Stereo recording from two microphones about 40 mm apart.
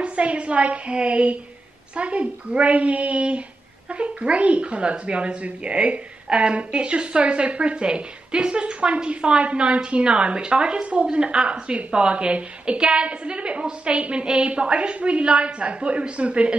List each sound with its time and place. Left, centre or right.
0.0 s a child's voice: right